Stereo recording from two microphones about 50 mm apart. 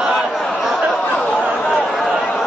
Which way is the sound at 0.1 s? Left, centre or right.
Centre.